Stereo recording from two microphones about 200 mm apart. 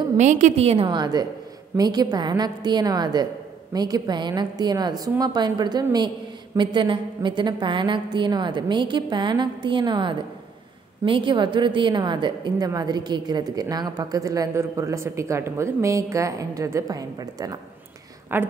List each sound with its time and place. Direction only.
0.2 s a woman's voice: 35° right (ahead or behind)
0.8 s a woman's voice: 20° right (ahead or behind)